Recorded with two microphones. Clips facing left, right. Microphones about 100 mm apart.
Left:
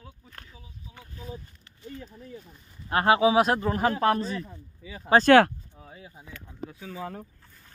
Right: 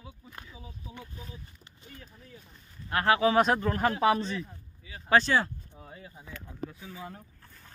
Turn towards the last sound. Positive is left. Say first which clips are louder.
# even
turn(degrees=0)  # may be behind; listen again after turning